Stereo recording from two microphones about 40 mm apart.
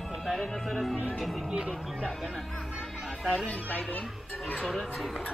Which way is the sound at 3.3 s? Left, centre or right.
Left.